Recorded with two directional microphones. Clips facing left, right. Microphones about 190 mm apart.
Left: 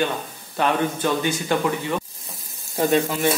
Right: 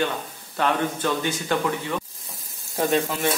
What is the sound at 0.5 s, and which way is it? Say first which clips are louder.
A man's voice: left 2 dB; 15° left (ahead or behind).